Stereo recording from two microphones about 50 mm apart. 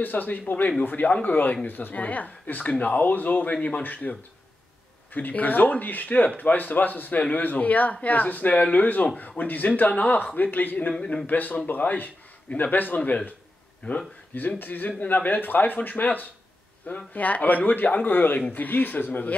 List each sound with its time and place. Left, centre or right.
0.0 s speech: left
5.1 s speech: left
10.9 s speech: left
11.2 s speech: left
14.6 s speech: left